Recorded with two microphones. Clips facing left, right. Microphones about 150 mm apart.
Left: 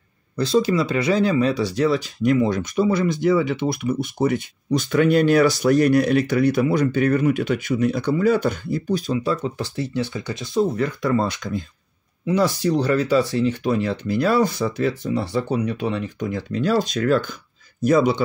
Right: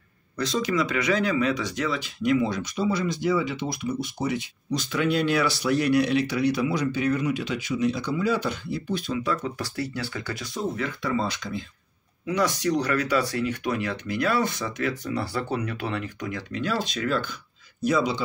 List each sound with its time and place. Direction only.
0.4 s speech: 30° left (ahead or behind)
10.8 s speech: 45° left (ahead or behind)
12.3 s speech: 30° left (ahead or behind); by 18.2 s 50° left (ahead or behind)